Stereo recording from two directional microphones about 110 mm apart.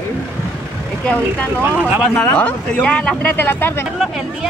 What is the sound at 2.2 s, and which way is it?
Speech, 15° left (ahead or behind).